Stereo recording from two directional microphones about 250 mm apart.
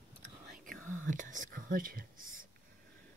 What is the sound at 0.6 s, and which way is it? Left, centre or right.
Whispering, right.